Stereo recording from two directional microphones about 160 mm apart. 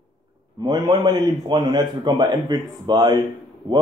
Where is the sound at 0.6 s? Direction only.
25° right (ahead or behind).